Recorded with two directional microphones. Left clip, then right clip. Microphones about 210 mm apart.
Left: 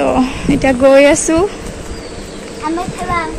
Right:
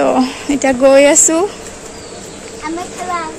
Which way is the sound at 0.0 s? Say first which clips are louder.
Even; 20° right (ahead or behind).